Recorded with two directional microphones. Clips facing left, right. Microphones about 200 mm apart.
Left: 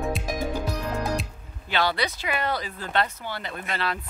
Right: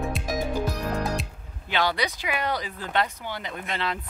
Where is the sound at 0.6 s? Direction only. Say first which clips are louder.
Even; centre (ahead or behind).